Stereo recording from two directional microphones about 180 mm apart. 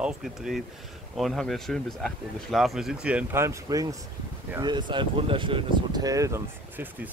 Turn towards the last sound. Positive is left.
turn(degrees=-15)  # may be behind; listen again after turning